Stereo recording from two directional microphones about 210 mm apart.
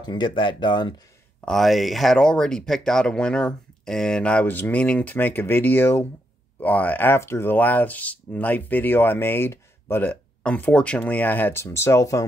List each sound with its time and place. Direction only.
0.0 s speech: 20° left (ahead or behind)
1.4 s speech: centre (ahead or behind)